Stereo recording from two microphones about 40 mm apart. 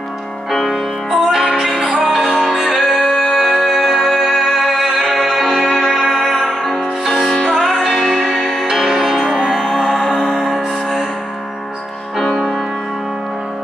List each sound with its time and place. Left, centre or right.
0.5 s music: centre
1.2 s music: centre
8.6 s music: centre
9.5 s music: centre